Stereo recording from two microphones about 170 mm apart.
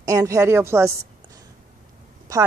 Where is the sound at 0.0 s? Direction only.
20° right (ahead or behind).